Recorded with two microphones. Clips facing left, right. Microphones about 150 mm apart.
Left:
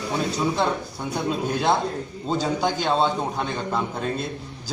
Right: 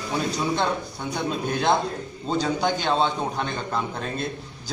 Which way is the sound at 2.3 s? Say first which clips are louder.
Even; 5° left (ahead or behind).